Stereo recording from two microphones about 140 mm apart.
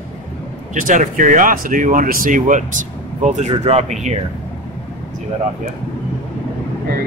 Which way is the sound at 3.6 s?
50° right (ahead or behind).